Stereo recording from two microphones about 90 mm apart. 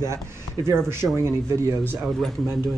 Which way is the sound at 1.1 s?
30° right (ahead or behind).